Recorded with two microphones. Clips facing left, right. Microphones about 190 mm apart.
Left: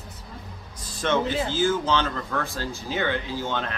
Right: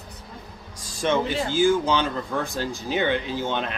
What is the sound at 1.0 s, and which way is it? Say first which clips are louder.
Speech: right 1 dB; 10° right (ahead or behind).